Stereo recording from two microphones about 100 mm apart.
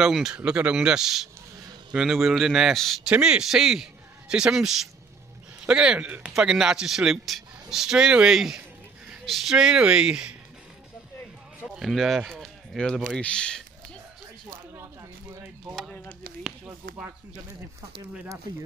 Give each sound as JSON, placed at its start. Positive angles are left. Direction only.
{"t": 0.0, "sound": "a man's voice", "side_deg": -5}
{"t": 3.1, "sound": "a man's voice", "side_deg": -10}
{"t": 11.6, "sound": "speech", "side_deg": 0}
{"t": 16.6, "sound": "speech", "side_deg": -20}